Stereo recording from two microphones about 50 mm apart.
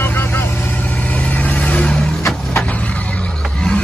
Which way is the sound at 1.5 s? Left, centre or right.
Left.